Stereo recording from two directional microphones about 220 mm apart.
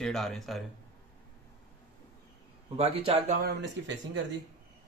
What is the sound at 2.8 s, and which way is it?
Speech, 30° right (ahead or behind).